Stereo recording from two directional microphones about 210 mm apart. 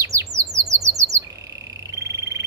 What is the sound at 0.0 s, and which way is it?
Bird, 15° right (ahead or behind).